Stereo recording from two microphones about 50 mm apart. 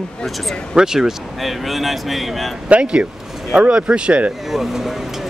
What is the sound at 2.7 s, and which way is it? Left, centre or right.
Speech, right.